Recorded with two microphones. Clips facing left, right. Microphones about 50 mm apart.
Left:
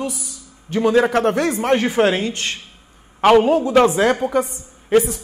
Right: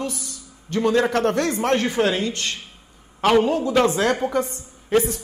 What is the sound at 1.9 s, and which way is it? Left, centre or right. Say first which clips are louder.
A man's voice: left 4 dB; left.